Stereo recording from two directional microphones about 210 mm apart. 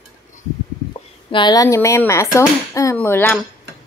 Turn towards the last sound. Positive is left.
turn(degrees=10)  # may be behind; listen again after turning